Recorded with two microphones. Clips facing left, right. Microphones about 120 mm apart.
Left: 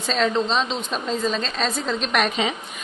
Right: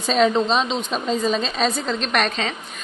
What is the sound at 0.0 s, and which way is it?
A woman's voice, 5° right (ahead or behind).